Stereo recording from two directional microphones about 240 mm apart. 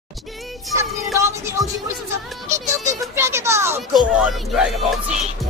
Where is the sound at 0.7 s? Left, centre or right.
Centre.